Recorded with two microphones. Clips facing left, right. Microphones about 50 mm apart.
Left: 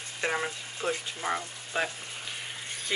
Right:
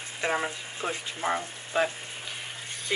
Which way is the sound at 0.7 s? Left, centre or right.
Centre.